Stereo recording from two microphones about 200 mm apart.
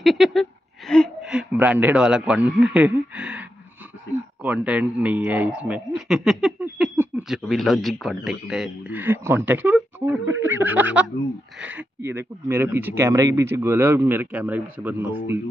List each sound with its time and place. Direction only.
0.0 s speech: centre (ahead or behind)